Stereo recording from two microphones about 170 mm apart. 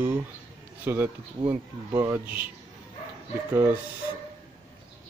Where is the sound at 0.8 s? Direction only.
10° right (ahead or behind).